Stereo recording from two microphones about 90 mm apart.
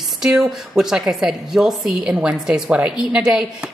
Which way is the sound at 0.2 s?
5° right (ahead or behind).